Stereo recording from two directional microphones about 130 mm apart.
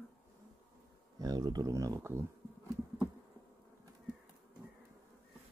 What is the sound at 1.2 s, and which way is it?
Speech, 30° right (ahead or behind).